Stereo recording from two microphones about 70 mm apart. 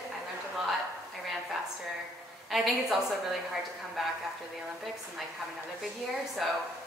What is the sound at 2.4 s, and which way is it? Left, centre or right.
A woman's voice, centre.